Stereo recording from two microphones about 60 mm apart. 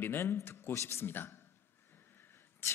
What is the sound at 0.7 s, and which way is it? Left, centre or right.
Speech, left.